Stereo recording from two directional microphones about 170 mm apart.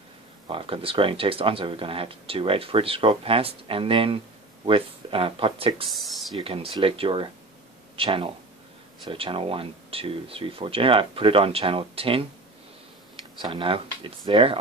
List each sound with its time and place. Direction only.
0.5 s speech: 30° right (ahead or behind)
5.9 s speech: centre (ahead or behind)
6.3 s speech: 35° right (ahead or behind)